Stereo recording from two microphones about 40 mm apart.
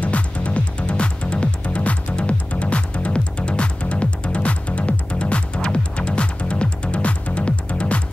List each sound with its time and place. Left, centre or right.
0.0 s music: left